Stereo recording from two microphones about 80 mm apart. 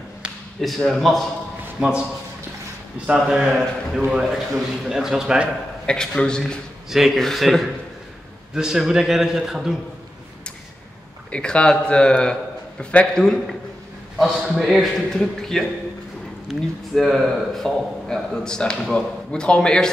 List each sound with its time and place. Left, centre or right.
0.6 s a man's voice: centre
1.8 s a man's voice: centre
3.3 s a man's voice: centre
5.9 s a man's voice: centre
11.2 s speech: centre
14.1 s a man's voice: centre